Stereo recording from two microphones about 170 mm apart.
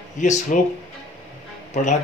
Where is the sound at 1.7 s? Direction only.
45° left (ahead or behind).